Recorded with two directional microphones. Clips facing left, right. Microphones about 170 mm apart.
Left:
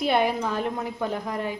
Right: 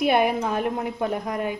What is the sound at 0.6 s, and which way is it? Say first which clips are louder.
Frying: right 3 dB; 15° right (ahead or behind).